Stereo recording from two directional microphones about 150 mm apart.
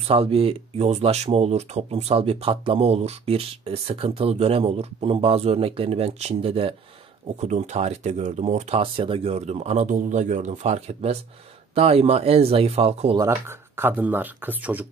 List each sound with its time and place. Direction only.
0.0 s speech: 40° right (ahead or behind)
13.3 s speech: 15° right (ahead or behind)